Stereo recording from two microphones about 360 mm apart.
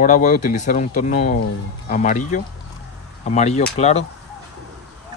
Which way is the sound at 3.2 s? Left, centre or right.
Centre.